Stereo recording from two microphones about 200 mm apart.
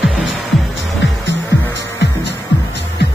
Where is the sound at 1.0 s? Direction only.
65° left (ahead or behind).